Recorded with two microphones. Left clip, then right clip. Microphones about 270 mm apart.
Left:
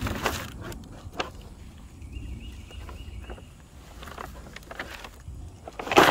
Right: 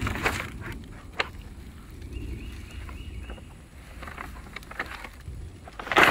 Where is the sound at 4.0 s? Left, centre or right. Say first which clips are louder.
Even; left.